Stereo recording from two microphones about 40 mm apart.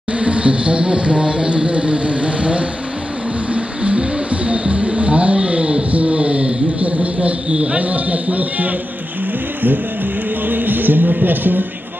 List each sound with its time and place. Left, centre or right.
0.2 s speech: right
3.5 s music: right
10.4 s music: right